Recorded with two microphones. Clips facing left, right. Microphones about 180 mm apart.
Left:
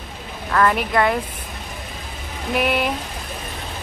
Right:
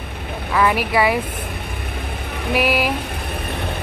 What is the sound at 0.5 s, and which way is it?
Speech, 5° right (ahead or behind).